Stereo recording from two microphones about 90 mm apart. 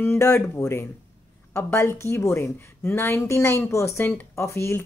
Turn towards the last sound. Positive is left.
turn(degrees=30)  # may be behind; listen again after turning